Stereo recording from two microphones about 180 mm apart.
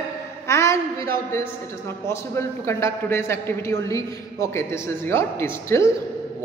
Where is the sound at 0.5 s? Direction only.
15° left (ahead or behind).